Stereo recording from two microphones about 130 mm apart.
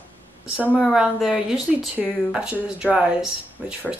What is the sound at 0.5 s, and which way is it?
Speech, 10° right (ahead or behind).